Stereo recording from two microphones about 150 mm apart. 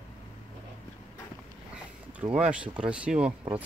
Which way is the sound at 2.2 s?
10° right (ahead or behind).